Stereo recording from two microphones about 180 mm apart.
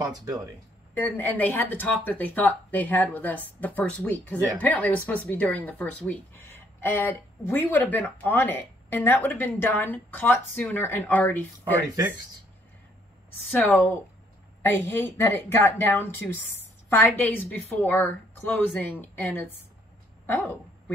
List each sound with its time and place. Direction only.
0.1 s speech: 20° right (ahead or behind)
0.9 s speech: 10° left (ahead or behind)
13.5 s speech: 10° left (ahead or behind)